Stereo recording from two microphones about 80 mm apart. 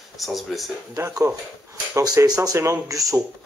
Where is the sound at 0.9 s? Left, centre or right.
Right.